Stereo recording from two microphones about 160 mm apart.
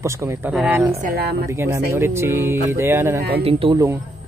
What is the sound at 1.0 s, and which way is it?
Speech, 80° right.